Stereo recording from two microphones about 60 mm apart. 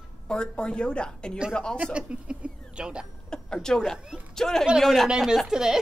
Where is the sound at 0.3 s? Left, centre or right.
Centre.